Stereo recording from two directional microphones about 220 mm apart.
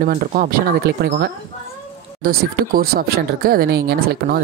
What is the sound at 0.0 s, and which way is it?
Speech, 35° right (ahead or behind).